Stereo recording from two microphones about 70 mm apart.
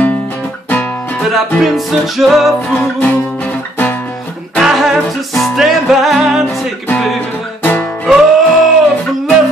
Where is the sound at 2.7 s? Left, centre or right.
Left.